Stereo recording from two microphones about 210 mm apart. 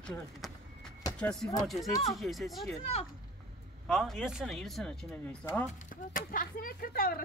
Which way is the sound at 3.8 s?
Centre (ahead or behind).